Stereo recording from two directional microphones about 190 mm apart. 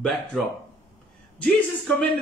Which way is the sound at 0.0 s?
Centre (ahead or behind).